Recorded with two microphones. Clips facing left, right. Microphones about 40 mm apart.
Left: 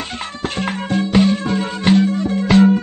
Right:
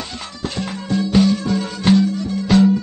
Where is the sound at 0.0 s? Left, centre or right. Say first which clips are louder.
Left 3 dB; left.